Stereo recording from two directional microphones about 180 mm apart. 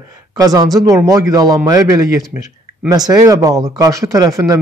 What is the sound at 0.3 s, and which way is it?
Speech, 20° right (ahead or behind).